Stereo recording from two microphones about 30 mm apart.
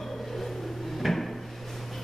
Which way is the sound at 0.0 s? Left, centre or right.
Centre.